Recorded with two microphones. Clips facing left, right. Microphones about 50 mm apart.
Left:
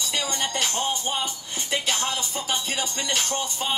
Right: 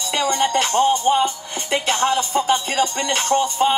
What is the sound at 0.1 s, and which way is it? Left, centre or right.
Music, right.